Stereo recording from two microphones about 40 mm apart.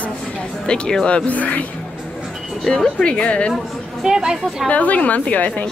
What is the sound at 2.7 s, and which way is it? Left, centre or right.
Speech, left.